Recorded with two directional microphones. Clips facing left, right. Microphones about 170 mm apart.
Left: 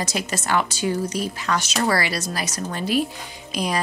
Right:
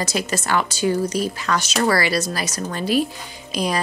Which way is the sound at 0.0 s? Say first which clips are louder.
Right 3 dB; 35° right (ahead or behind).